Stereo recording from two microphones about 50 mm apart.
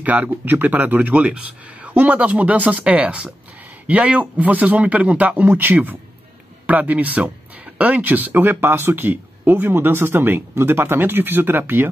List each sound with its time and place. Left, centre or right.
0.0 s speech: right
5.5 s speech: right